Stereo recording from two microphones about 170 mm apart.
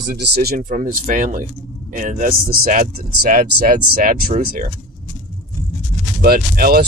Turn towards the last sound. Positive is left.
turn(degrees=-65)  # may be behind; listen again after turning